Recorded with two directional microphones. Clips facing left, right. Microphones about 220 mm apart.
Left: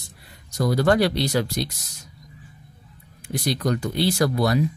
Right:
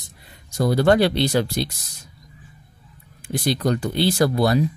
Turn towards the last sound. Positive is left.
turn(degrees=-30)  # may be behind; listen again after turning